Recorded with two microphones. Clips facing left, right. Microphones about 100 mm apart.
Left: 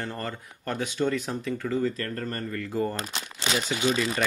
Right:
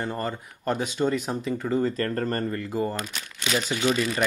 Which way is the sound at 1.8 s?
40° right (ahead or behind).